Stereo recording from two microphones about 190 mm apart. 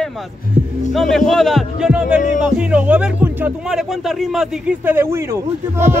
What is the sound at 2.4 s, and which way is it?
Speech, 5° right (ahead or behind).